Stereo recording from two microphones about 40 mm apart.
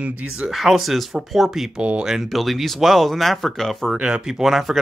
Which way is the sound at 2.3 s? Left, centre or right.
Centre.